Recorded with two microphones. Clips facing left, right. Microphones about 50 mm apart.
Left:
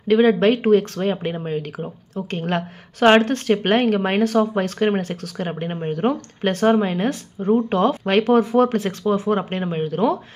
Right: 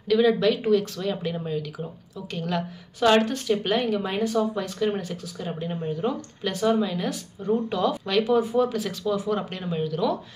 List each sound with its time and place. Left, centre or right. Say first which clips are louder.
0.1 s speech: left 5 dB; left